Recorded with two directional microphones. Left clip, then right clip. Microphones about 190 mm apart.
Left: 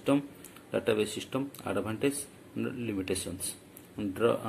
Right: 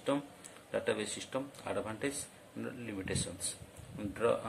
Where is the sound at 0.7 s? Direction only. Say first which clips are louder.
Left 6 dB; 15° left (ahead or behind).